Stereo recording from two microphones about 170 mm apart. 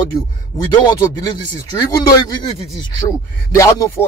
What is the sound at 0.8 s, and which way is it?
Speech, 20° left (ahead or behind).